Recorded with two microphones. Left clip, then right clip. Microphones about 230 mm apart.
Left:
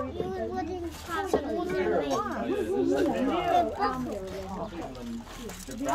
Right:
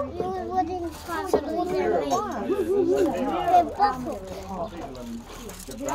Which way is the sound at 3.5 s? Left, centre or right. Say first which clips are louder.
Right 8 dB; centre.